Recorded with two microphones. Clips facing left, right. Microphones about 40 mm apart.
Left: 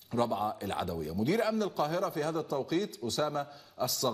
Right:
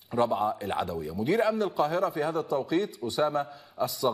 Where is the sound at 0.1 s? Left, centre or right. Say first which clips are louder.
Right 5 dB; centre.